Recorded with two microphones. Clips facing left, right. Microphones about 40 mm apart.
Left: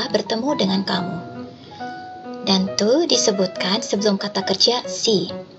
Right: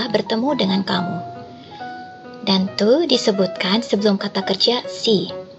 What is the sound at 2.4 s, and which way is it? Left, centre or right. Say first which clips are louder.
Speech: right 2 dB; centre.